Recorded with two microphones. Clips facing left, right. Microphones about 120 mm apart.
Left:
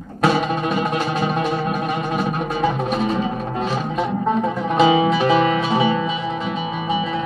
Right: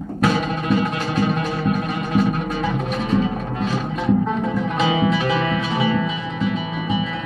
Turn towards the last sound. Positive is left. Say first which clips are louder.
# left 2 dB
turn(degrees=25)  # may be behind; listen again after turning